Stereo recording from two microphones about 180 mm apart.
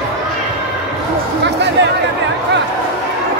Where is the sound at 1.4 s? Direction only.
75° right (ahead or behind).